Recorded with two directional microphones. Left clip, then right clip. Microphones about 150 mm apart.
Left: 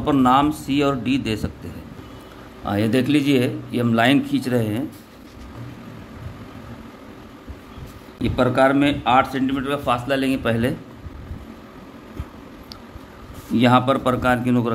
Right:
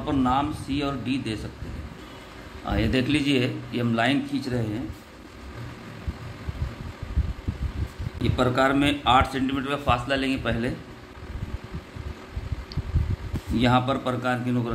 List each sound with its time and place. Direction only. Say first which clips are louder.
0.0 s a man's voice: left 8 dB; 50° left (ahead or behind)
2.6 s a man's voice: left 5 dB; 40° left (ahead or behind)
8.2 s a man's voice: left 5 dB; 25° left (ahead or behind)
13.6 s a man's voice: left 6 dB; 35° left (ahead or behind)